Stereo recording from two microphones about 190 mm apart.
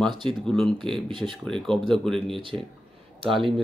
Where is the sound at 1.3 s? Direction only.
Centre (ahead or behind).